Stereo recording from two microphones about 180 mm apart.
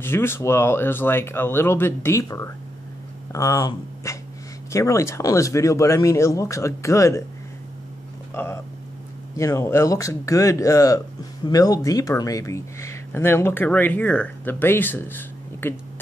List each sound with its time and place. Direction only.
0.0 s speech: 15° left (ahead or behind)
9.4 s speech: 15° left (ahead or behind)